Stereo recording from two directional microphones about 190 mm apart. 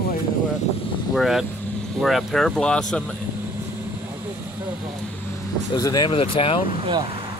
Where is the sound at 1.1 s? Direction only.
Centre (ahead or behind).